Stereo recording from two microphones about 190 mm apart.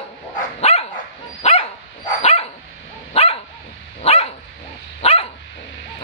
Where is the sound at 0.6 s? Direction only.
30° left (ahead or behind).